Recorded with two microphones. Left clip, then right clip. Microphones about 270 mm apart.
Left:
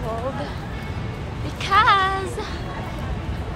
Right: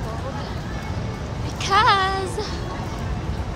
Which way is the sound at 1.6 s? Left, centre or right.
Centre.